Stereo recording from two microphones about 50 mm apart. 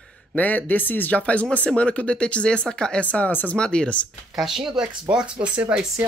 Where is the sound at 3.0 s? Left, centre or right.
Left.